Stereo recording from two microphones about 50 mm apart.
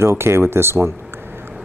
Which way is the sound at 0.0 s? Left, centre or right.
Right.